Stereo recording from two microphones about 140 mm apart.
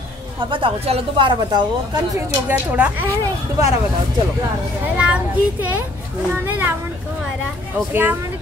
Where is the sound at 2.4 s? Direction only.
10° right (ahead or behind).